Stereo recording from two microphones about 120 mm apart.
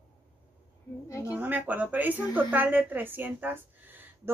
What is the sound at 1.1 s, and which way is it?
Speech, 25° left (ahead or behind).